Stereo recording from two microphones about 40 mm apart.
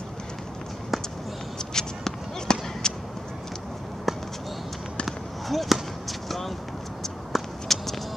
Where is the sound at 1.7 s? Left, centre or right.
Centre.